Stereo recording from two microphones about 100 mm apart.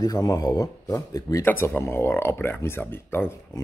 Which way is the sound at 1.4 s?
20° left (ahead or behind).